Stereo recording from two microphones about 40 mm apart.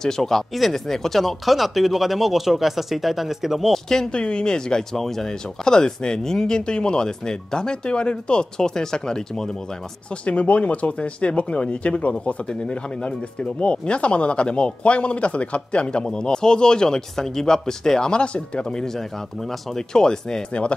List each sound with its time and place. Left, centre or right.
0.0 s speech: centre
3.7 s speech: centre
4.1 s speech: left
10.2 s speech: left; by 20.4 s centre